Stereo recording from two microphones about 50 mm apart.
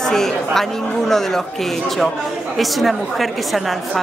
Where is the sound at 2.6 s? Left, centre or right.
Centre.